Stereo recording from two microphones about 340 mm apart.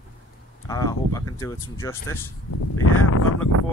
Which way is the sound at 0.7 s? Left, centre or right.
Centre.